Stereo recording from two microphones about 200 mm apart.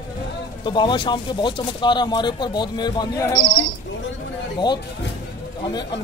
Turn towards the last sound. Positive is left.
turn(degrees=25)  # may be behind; listen again after turning